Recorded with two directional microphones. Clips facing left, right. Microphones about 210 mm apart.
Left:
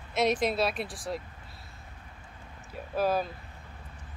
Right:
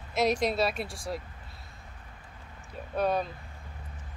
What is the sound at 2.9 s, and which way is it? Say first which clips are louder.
Speech: even; 5° left (ahead or behind).